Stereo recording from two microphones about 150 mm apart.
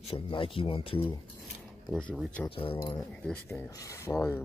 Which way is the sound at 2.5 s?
35° left (ahead or behind).